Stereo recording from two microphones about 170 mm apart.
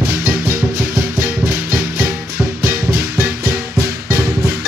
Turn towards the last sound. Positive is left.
turn(degrees=-15)  # may be behind; listen again after turning